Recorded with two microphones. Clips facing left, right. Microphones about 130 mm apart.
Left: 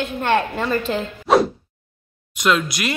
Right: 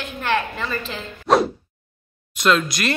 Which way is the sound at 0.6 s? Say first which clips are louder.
Left 7 dB; 40° left (ahead or behind).